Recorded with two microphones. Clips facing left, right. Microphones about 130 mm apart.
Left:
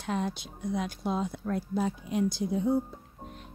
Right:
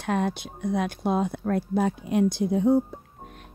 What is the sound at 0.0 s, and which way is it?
Speech, 65° right (ahead or behind).